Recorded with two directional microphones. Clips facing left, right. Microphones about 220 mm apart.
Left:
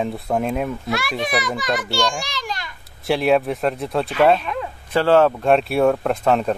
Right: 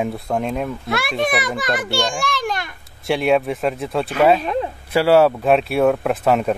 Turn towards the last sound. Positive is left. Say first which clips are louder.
# right 1 dB
turn(degrees=-5)  # may be behind; listen again after turning